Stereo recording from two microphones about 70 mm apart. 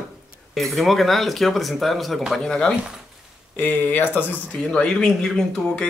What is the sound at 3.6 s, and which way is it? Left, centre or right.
Speech, left.